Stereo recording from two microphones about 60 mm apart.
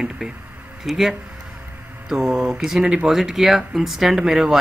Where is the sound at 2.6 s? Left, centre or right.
Centre.